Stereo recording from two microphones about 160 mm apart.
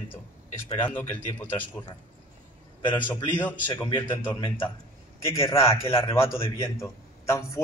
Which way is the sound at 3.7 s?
25° left (ahead or behind).